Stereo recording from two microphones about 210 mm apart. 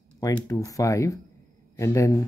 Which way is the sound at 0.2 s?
15° left (ahead or behind).